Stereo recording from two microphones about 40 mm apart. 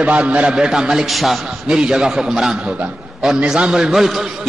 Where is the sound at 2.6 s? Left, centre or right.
Right; by 4.2 s centre.